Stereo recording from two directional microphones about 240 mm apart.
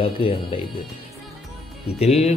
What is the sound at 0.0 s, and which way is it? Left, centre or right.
Speech, left.